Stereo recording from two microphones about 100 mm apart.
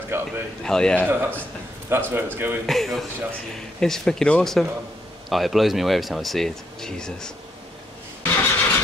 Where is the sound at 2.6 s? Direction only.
Centre (ahead or behind).